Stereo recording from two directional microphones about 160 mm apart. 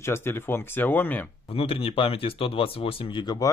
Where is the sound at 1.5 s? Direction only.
35° left (ahead or behind).